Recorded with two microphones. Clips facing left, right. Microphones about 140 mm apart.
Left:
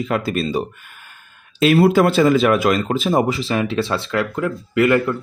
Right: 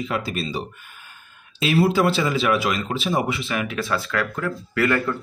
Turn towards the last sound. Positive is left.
turn(degrees=20)  # may be behind; listen again after turning